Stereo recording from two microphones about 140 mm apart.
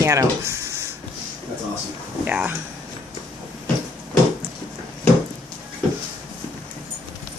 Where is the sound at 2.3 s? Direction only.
15° right (ahead or behind).